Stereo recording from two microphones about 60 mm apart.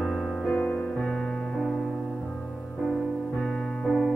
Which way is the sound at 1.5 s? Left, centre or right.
Centre.